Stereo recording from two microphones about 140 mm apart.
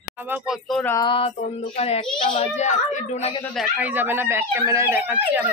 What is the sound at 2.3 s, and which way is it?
A woman's voice, 55° left (ahead or behind).